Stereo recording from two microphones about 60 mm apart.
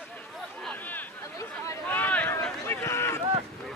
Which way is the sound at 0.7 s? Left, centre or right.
Left.